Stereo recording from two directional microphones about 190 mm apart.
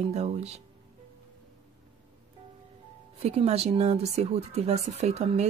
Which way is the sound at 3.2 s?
35° right (ahead or behind).